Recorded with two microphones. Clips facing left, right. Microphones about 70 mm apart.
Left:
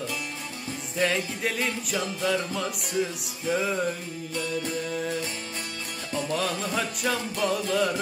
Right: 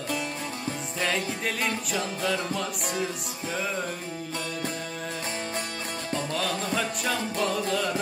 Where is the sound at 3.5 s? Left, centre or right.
Centre.